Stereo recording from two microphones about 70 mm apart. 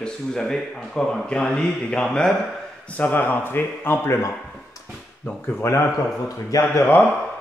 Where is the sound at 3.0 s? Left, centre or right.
Left.